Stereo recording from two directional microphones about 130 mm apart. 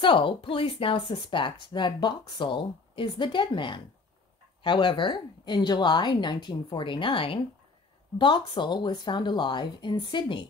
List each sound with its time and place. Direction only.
0.0 s speech: 40° left (ahead or behind)